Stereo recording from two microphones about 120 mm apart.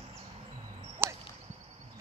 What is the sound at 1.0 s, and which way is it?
Whip, 20° right (ahead or behind).